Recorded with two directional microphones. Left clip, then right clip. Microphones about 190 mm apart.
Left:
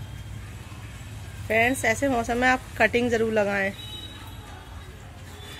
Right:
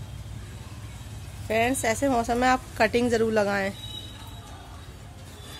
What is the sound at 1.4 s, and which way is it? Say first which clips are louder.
Speech: left 2 dB; centre (ahead or behind).